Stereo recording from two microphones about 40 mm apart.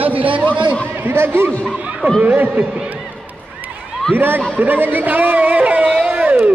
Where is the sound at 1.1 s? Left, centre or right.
Right.